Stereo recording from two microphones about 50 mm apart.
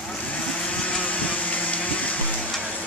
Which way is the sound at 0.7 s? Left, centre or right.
Left.